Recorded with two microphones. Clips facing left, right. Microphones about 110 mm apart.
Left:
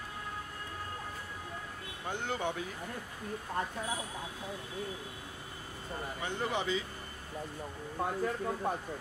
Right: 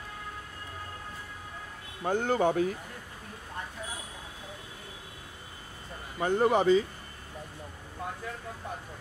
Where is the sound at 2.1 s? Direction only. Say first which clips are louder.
Right 9 dB; 45° right (ahead or behind).